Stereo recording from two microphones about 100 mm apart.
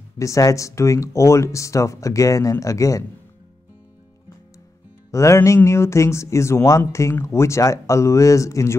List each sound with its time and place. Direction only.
0.2 s speech: 35° left (ahead or behind)
5.1 s speech: 30° left (ahead or behind)